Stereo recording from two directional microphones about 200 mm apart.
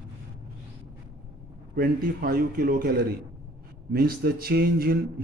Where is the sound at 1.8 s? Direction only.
45° right (ahead or behind).